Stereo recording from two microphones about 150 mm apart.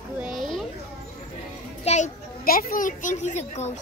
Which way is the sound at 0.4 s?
Centre (ahead or behind).